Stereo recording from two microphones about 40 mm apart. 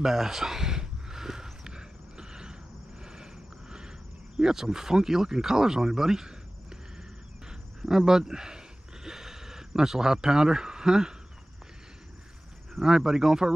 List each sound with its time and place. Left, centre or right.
0.0 s a sound: centre
7.8 s speech: centre
12.8 s speech: centre